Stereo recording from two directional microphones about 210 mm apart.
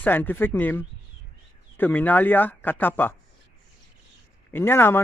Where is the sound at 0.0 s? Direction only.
10° left (ahead or behind).